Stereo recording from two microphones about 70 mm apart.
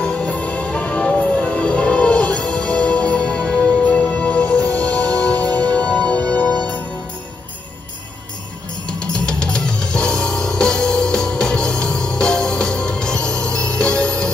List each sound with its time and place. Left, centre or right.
0.0 s music: centre
8.8 s music: centre